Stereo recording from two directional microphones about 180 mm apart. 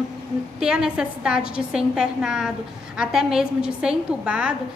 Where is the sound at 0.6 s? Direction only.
5° right (ahead or behind).